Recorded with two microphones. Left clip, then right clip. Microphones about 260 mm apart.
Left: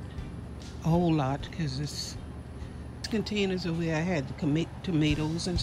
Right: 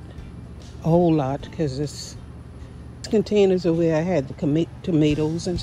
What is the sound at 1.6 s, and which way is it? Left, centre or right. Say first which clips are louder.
Speech: right 12 dB; left.